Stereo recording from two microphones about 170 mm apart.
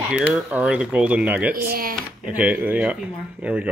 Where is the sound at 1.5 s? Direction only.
60° right (ahead or behind).